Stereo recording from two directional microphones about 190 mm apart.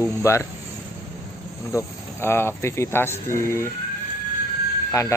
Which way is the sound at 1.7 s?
15° left (ahead or behind).